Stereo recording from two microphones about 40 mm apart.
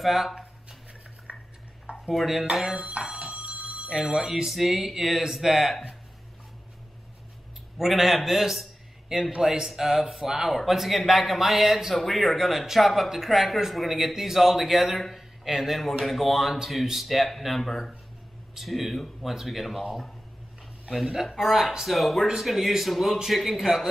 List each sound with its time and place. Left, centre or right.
0.0 s speech: centre
1.3 s cutlery: right
2.0 s speech: centre
3.0 s telephone bell ringing: right
3.9 s speech: centre
4.5 s speech: centre
7.7 s speech: centre
23.6 s speech: centre